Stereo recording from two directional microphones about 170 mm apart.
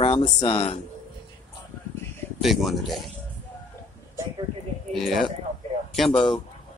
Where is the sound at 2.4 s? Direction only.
Centre (ahead or behind).